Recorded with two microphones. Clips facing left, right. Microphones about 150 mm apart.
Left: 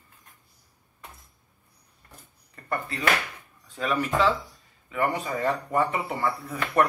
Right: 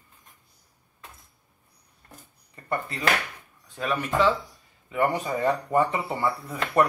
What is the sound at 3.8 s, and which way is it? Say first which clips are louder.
Speech: even; 15° right (ahead or behind).